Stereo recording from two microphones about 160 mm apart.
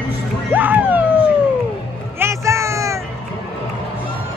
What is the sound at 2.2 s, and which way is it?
Music, 15° right (ahead or behind).